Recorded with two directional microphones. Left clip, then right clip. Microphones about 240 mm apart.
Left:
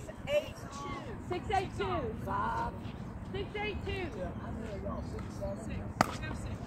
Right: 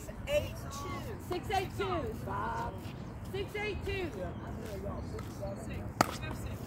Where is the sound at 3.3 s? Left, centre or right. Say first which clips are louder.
Right 1 dB; right.